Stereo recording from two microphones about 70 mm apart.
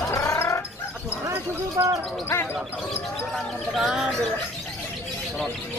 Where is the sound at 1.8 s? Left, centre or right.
Right.